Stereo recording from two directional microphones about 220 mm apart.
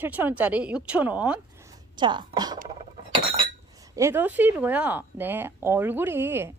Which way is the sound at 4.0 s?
10° right (ahead or behind).